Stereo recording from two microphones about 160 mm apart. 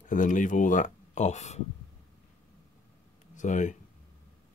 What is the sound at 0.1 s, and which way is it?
Speech, 55° left (ahead or behind).